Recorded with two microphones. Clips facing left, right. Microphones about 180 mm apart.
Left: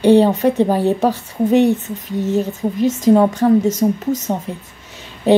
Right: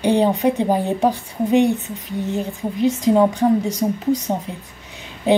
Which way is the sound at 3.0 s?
15° right (ahead or behind).